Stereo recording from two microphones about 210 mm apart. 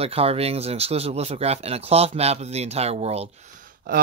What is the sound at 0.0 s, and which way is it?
Speech, 30° right (ahead or behind).